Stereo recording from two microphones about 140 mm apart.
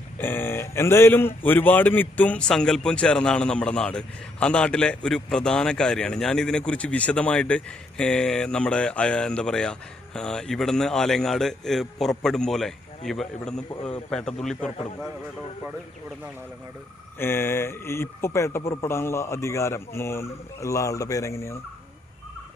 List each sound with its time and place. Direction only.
0.2 s a man's voice: 15° left (ahead or behind)
17.2 s speech: 15° left (ahead or behind)